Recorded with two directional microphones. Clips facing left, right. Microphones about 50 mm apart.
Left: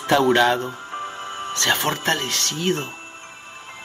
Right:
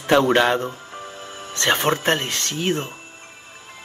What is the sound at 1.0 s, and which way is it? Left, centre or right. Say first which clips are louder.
Music: left 5 dB; left.